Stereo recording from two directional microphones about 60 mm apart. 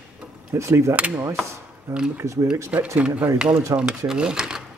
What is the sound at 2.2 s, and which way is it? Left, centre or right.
Speech, right.